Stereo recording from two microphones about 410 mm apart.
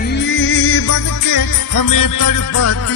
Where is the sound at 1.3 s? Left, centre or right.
Left.